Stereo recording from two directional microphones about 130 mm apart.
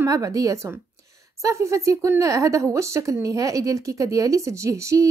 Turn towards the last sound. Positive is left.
turn(degrees=-25)  # may be behind; listen again after turning